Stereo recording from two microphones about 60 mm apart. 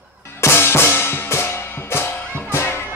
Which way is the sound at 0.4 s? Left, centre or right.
Left.